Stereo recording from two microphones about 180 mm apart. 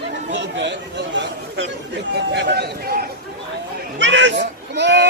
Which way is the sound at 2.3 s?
70° right (ahead or behind).